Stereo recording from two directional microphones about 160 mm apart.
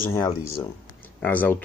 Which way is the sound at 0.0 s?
15° left (ahead or behind).